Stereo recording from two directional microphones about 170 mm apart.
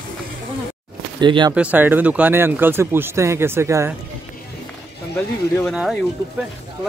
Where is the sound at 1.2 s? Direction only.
25° right (ahead or behind).